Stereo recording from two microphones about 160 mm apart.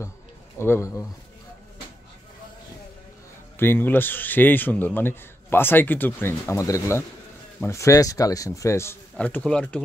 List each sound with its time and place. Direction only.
0.6 s a man's voice: 15° left (ahead or behind)
3.5 s a man's voice: 15° left (ahead or behind)